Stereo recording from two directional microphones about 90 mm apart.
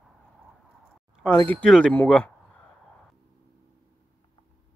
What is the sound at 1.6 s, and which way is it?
Speech, 10° left (ahead or behind).